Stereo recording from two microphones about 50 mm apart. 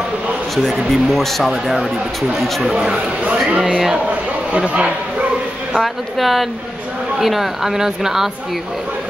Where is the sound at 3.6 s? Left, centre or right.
Centre.